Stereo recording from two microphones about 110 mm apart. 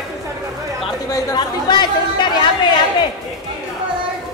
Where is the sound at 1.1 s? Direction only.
40° left (ahead or behind).